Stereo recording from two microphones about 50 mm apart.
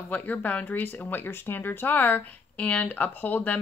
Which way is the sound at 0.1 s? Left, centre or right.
Left.